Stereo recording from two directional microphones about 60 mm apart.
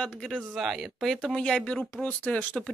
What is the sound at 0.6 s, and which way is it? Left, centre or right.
Speech, centre.